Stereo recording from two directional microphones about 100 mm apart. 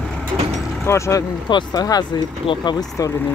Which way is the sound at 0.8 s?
30° left (ahead or behind).